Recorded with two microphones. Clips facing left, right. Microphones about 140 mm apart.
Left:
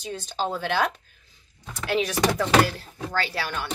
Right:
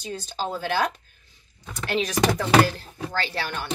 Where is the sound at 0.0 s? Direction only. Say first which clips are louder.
Left 1 dB; centre (ahead or behind).